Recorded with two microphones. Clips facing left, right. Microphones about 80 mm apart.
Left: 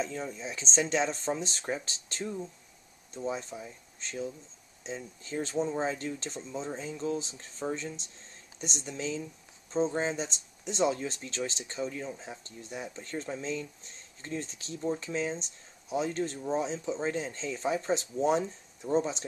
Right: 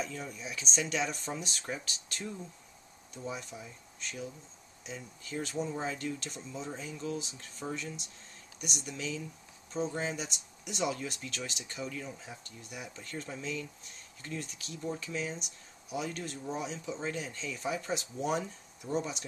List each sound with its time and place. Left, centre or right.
0.0 s speech: left